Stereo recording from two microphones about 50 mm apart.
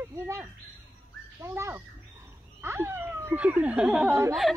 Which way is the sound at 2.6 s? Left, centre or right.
Right.